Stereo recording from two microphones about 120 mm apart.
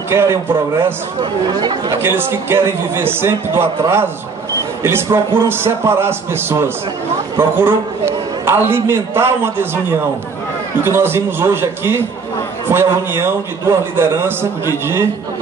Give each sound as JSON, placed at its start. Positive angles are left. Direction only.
{"t": 0.1, "sound": "a man's voice", "side_deg": -20}
{"t": 1.5, "sound": "speech", "side_deg": -40}
{"t": 2.0, "sound": "a man's voice", "side_deg": -20}